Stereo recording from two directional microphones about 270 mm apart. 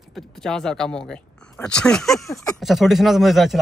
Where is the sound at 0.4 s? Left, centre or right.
Centre.